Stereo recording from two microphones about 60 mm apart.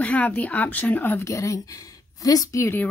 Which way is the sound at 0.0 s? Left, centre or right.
Left.